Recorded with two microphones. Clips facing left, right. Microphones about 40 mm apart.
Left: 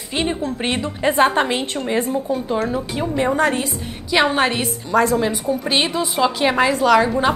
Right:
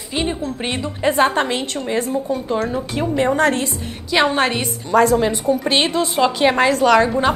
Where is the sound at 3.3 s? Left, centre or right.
Centre.